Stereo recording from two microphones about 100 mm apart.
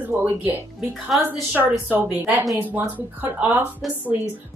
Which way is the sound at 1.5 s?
15° right (ahead or behind).